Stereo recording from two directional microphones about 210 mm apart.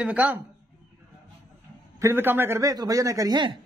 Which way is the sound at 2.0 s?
10° right (ahead or behind).